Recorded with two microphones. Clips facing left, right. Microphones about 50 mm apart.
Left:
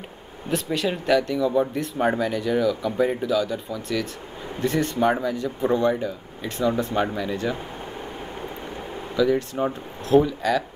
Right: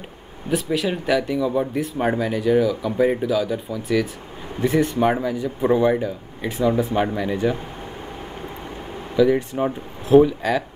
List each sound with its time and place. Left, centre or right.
0.5 s speech: centre
9.1 s speech: centre